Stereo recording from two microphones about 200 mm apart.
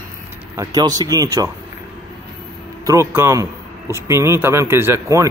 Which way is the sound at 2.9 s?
15° right (ahead or behind).